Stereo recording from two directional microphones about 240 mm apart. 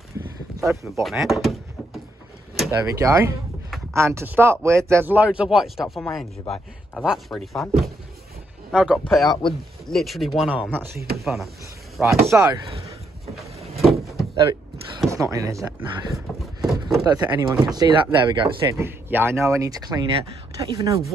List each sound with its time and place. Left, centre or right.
0.2 s a sound: centre
1.0 s speech: centre
2.5 s a sound: centre
2.9 s speech: centre
5.9 s speech: centre
13.7 s door: centre
15.0 s speech: centre
16.3 s a sound: centre
17.0 s speech: centre